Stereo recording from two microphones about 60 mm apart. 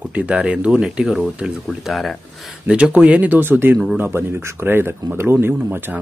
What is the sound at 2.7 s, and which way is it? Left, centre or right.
Speech, centre.